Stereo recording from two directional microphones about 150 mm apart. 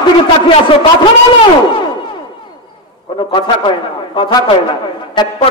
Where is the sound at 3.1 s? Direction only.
35° left (ahead or behind).